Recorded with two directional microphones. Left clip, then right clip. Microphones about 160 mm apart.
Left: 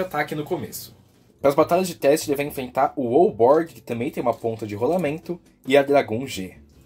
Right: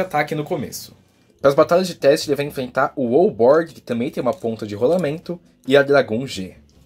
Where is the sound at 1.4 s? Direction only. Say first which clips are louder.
Right 4 dB; 25° right (ahead or behind).